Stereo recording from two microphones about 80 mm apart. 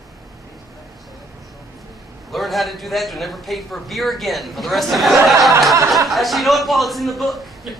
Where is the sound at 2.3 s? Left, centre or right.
Centre.